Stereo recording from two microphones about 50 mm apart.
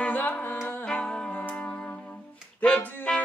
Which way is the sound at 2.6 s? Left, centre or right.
Left.